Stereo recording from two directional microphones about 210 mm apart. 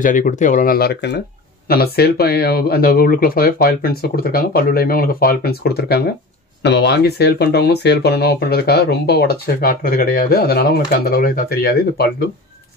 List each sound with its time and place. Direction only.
0.0 s speech: 40° left (ahead or behind)